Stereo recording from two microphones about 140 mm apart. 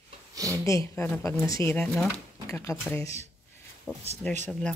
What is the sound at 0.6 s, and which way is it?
A woman's voice, 20° left (ahead or behind).